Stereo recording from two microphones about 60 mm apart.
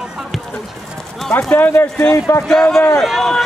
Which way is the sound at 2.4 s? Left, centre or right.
Centre.